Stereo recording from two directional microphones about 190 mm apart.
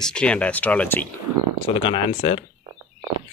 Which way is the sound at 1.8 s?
25° left (ahead or behind).